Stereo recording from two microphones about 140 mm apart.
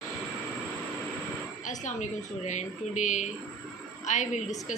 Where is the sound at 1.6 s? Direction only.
60° left (ahead or behind).